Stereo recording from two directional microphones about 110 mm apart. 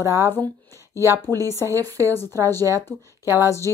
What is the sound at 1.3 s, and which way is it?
Speech, 25° left (ahead or behind).